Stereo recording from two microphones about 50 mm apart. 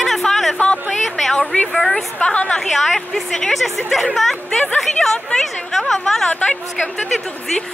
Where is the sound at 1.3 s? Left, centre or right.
Left.